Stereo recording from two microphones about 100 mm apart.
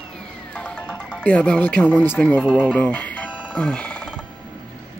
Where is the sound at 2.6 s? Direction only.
10° left (ahead or behind).